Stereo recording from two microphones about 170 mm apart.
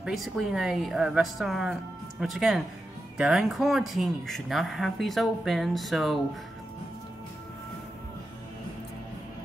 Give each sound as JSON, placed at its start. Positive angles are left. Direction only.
{"t": 0.0, "sound": "speech", "side_deg": 0}